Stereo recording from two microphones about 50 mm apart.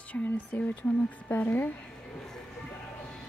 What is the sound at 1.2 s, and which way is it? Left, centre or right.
Speech, left.